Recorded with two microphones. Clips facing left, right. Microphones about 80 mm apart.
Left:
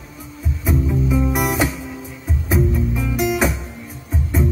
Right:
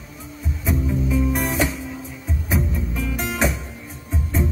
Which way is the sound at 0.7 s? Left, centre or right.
Centre.